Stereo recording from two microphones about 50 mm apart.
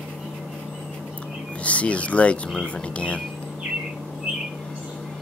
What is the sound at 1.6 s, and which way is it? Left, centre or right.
Speech, left.